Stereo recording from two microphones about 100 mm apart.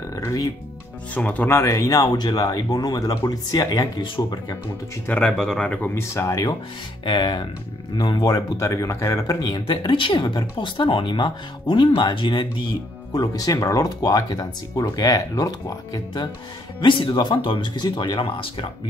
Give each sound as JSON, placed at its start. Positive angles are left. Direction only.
{"t": 0.1, "sound": "music", "side_deg": 35}
{"t": 1.1, "sound": "speech", "side_deg": 15}
{"t": 1.6, "sound": "speech", "side_deg": 30}
{"t": 5.0, "sound": "speech", "side_deg": 10}
{"t": 7.1, "sound": "speech", "side_deg": 45}
{"t": 9.4, "sound": "speech", "side_deg": 50}
{"t": 13.1, "sound": "speech", "side_deg": 40}
{"t": 16.8, "sound": "speech", "side_deg": 55}
{"t": 18.2, "sound": "speech", "side_deg": 65}